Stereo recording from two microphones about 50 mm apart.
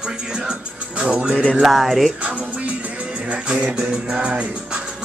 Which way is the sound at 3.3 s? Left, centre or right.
Right.